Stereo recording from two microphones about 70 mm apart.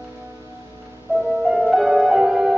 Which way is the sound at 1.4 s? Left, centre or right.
Centre.